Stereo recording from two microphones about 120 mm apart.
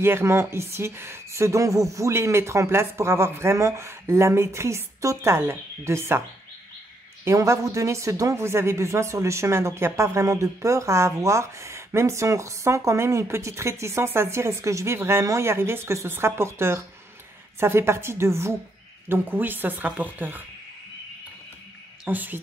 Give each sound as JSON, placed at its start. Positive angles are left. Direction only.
{"t": 0.0, "sound": "speech", "side_deg": -20}
{"t": 7.2, "sound": "speech", "side_deg": -25}
{"t": 22.0, "sound": "speech", "side_deg": -15}